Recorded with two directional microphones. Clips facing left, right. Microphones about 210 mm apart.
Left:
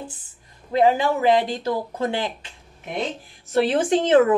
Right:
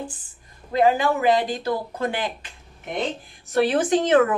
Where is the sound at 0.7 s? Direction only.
25° left (ahead or behind).